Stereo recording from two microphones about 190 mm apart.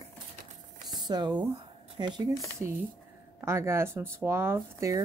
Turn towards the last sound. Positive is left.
turn(degrees=-15)  # may be behind; listen again after turning